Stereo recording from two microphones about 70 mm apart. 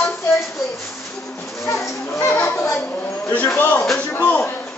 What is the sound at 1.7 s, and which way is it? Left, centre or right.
Speech, left.